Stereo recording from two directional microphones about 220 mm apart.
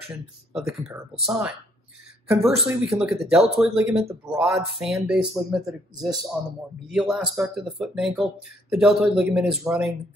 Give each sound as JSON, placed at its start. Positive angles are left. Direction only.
{"t": 0.5, "sound": "speech", "side_deg": 0}